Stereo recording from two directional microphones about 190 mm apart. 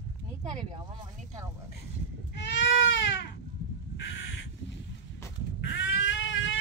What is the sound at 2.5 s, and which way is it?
Goat, 70° left (ahead or behind).